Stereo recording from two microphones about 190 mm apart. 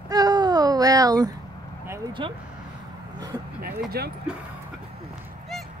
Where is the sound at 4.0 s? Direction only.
55° right (ahead or behind).